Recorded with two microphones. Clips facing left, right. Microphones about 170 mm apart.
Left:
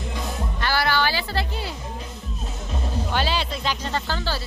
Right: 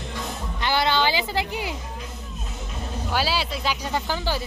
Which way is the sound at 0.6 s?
20° right (ahead or behind).